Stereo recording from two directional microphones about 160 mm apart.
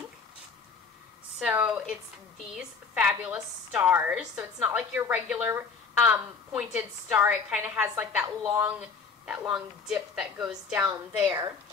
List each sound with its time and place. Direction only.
1.9 s a woman's voice: 5° right (ahead or behind)
11.1 s a woman's voice: 25° right (ahead or behind)